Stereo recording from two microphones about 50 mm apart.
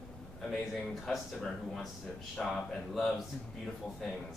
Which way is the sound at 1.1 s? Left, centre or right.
Centre.